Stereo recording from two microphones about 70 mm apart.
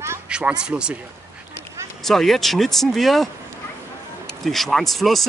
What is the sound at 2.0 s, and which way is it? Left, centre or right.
Speech, centre.